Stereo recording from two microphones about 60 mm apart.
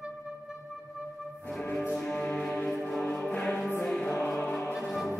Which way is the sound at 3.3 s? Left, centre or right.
Left.